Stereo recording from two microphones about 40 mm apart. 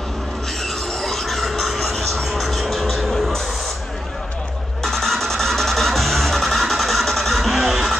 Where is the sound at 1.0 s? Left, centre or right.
Centre.